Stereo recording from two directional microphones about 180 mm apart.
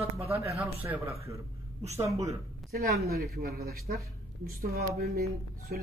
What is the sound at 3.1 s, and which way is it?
A man's voice, 60° right (ahead or behind).